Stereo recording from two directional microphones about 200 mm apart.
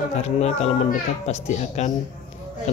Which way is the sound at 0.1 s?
35° left (ahead or behind).